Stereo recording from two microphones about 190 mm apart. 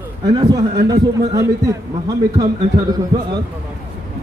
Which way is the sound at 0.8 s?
15° right (ahead or behind).